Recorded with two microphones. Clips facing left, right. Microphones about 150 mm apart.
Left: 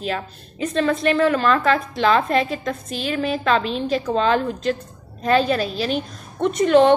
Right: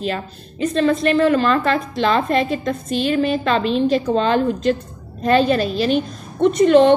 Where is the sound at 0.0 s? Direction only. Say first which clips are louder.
Right 2 dB; 5° left (ahead or behind).